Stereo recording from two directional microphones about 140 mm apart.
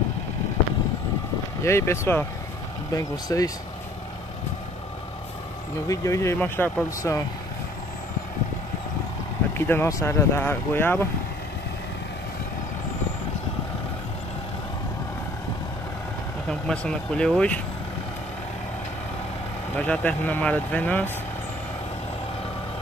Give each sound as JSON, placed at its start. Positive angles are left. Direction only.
{"t": 1.6, "sound": "speech", "side_deg": 20}
{"t": 5.9, "sound": "speech", "side_deg": 20}
{"t": 9.7, "sound": "speech", "side_deg": 20}
{"t": 16.4, "sound": "speech", "side_deg": 5}
{"t": 19.7, "sound": "speech", "side_deg": 10}